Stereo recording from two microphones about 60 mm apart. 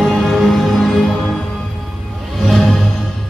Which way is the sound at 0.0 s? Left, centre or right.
Centre.